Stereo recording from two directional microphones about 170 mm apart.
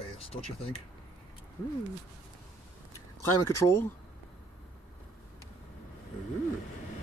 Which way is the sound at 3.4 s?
15° left (ahead or behind).